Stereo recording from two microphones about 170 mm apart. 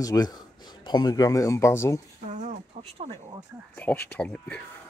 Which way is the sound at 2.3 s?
45° right (ahead or behind).